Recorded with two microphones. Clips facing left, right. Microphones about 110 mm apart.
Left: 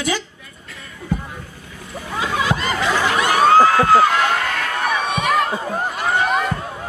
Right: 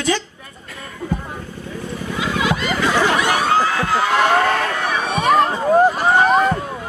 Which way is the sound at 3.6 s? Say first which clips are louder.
Left 6 dB; 45° left (ahead or behind).